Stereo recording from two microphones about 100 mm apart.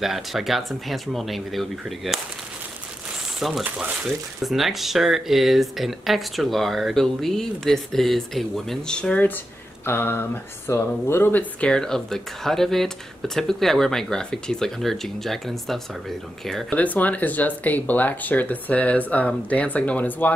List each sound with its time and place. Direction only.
0.0 s speech: centre (ahead or behind)
3.3 s speech: 5° right (ahead or behind)
3.6 s speech: 15° right (ahead or behind)
4.0 s speech: centre (ahead or behind); by 11.4 s 25° left (ahead or behind)
11.6 s speech: 5° left (ahead or behind)
16.7 s speech: 15° left (ahead or behind)